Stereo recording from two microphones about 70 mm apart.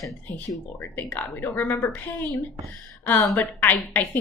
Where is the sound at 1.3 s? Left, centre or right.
Left.